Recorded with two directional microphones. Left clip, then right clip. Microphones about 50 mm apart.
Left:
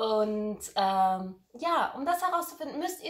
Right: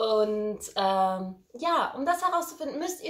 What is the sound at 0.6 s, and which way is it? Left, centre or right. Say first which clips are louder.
A woman's voice: even; right.